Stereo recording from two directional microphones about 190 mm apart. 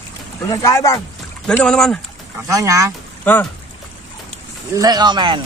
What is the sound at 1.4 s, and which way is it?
Speech, 5° left (ahead or behind).